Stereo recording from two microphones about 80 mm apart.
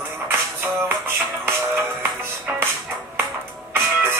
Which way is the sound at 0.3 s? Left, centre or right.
Right.